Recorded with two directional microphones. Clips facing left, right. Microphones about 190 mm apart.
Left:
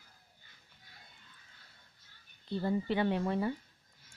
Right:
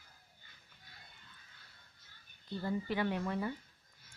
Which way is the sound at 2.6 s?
25° left (ahead or behind).